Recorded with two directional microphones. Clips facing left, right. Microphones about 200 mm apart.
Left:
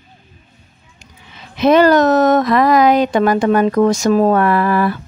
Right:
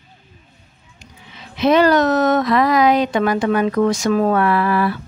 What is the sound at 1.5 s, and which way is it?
Speech, 50° left (ahead or behind).